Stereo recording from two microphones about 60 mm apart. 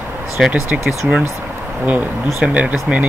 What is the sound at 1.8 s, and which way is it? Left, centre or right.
Speech, right.